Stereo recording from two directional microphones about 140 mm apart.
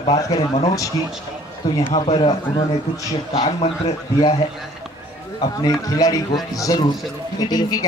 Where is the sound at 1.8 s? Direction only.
40° left (ahead or behind).